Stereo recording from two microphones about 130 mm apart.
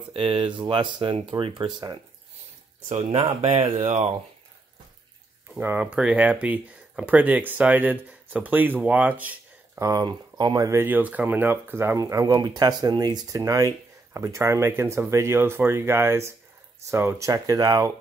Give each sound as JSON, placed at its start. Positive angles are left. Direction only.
{"t": 0.1, "sound": "speech", "side_deg": -45}
{"t": 3.3, "sound": "speech", "side_deg": -50}
{"t": 3.8, "sound": "speech", "side_deg": -60}
{"t": 5.6, "sound": "speech", "side_deg": -15}
{"t": 9.8, "sound": "speech", "side_deg": -25}